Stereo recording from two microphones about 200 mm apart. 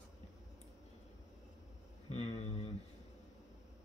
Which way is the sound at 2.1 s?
30° left (ahead or behind).